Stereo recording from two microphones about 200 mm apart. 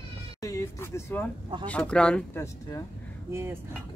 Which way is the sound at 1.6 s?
5° left (ahead or behind).